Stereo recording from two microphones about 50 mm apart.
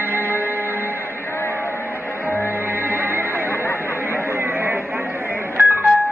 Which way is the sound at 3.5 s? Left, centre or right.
Left.